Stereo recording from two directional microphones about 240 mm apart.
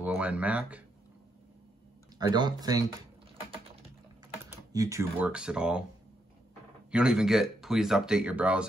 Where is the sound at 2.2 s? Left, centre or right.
Centre.